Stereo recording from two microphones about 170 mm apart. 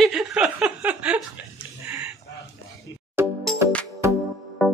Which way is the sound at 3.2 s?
15° right (ahead or behind).